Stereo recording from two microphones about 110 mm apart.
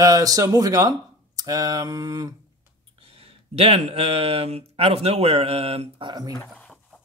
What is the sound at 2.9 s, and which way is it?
Speech, 60° right (ahead or behind).